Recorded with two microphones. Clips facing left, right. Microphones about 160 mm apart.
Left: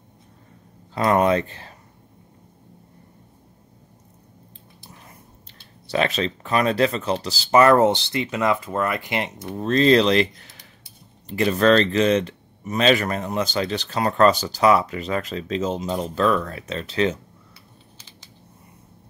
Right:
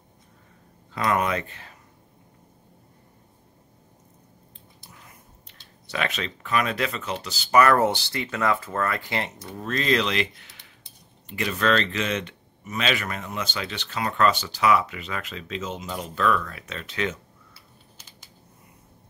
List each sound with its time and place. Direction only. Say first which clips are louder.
0.9 s speech: left 6 dB; 30° left (ahead or behind)
5.5 s speech: left 8 dB; 30° left (ahead or behind)